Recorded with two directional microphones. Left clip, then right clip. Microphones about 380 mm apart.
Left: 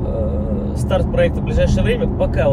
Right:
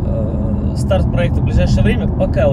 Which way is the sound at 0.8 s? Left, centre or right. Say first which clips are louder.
Left 1 dB; centre.